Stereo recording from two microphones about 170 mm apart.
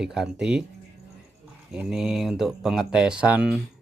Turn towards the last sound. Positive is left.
turn(degrees=-10)  # may be behind; listen again after turning